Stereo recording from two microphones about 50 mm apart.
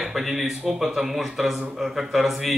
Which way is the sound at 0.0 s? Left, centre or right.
Centre.